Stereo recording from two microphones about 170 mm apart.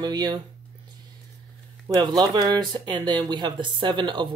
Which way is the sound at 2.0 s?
25° right (ahead or behind).